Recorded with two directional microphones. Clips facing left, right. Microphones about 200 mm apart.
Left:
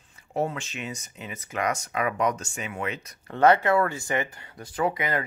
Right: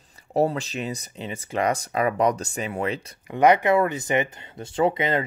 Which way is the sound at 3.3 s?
15° right (ahead or behind).